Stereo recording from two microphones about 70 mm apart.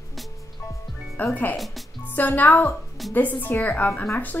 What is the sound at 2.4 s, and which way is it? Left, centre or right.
A woman's voice, left.